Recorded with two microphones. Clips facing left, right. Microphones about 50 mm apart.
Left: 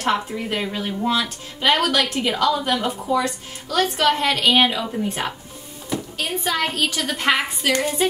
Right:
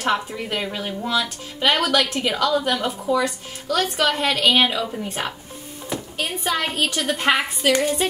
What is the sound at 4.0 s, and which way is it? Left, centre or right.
A woman's voice, centre.